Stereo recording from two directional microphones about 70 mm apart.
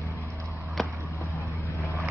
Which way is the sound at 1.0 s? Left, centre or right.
Left.